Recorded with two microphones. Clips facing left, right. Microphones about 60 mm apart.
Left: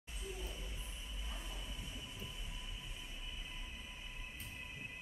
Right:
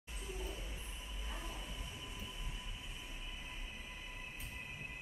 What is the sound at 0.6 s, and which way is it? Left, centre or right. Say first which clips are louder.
Train: right 1 dB; right.